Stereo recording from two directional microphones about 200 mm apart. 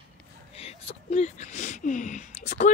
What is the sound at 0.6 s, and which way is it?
Speech, 30° left (ahead or behind).